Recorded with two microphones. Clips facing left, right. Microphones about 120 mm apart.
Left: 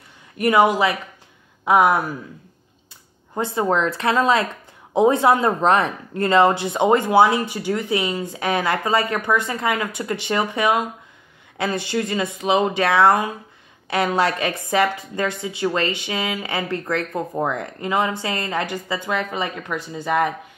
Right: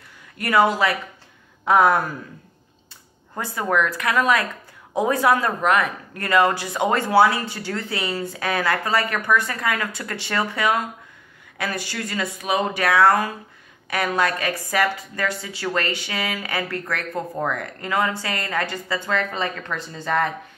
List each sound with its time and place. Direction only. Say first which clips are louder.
0.4 s a woman's voice: left 2 dB; 20° left (ahead or behind)
3.3 s a woman's voice: left 2 dB; 25° left (ahead or behind)